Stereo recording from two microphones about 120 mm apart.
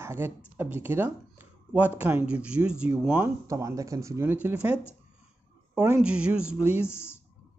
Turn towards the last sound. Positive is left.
turn(degrees=-10)  # may be behind; listen again after turning